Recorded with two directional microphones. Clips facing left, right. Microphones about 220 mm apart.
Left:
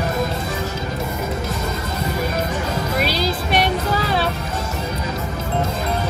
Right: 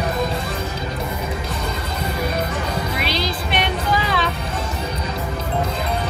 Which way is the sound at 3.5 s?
40° left (ahead or behind).